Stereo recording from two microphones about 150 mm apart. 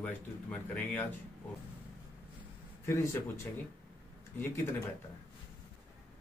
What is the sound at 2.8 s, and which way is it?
Speech, 20° left (ahead or behind).